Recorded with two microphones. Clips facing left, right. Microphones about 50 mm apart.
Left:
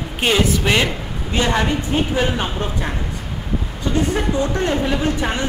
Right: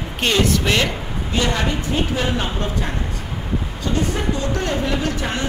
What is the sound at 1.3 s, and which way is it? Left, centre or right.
Speech, left.